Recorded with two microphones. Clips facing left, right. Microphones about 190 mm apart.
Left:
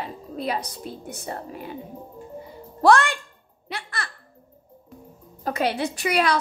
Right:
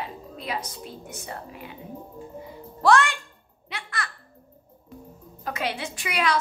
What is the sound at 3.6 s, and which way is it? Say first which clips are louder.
Babbling: left 1 dB; 35° left (ahead or behind).